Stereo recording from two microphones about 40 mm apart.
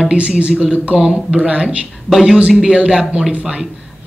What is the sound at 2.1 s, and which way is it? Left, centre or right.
Speech, centre.